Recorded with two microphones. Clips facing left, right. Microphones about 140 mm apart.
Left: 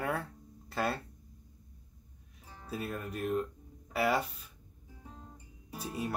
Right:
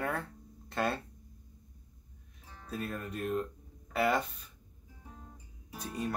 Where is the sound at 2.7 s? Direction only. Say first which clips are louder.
Even; 5° left (ahead or behind).